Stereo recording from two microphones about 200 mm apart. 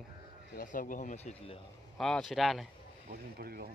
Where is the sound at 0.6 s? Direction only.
40° left (ahead or behind).